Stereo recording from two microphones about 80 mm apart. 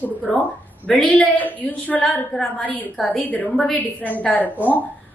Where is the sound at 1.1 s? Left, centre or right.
Centre.